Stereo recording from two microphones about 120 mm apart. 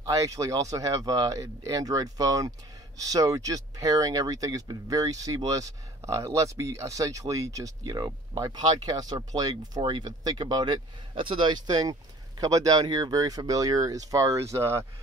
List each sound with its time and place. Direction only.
0.0 s speech: 30° right (ahead or behind)